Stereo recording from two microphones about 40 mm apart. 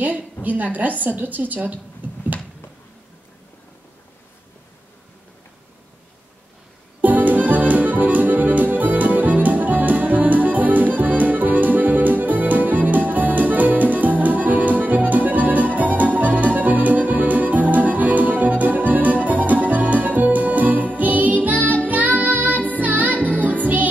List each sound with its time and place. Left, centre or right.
0.4 s a woman's voice: right
7.0 s accordion: right
21.5 s music: right